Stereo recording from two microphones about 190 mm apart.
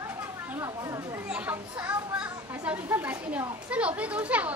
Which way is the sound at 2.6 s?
10° right (ahead or behind).